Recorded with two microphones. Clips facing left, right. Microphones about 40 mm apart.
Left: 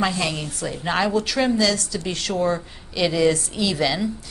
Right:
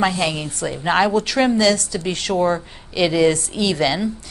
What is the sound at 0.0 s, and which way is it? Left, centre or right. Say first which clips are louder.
A woman's voice: right 3 dB; right.